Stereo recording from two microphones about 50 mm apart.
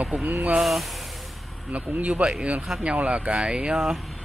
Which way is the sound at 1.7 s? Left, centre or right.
Right.